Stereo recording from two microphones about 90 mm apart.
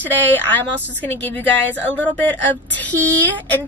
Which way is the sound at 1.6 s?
15° left (ahead or behind).